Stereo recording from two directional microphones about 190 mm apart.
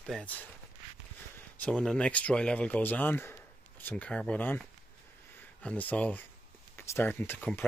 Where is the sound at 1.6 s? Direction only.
5° left (ahead or behind).